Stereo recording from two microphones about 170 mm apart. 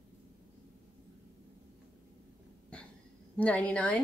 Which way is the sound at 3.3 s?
10° left (ahead or behind).